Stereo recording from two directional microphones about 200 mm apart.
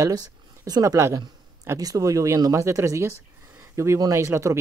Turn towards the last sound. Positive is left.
turn(degrees=-15)  # may be behind; listen again after turning